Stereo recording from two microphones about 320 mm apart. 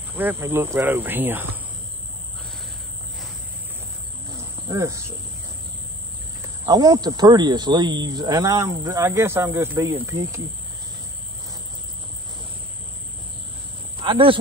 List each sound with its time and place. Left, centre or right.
0.2 s speech: centre
4.6 s speech: centre
6.6 s speech: centre
13.9 s speech: centre